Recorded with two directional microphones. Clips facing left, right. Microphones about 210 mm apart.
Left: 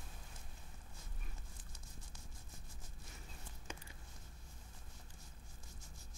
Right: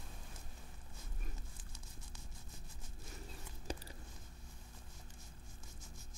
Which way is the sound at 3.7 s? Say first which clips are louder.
Right 7 dB; 35° right (ahead or behind).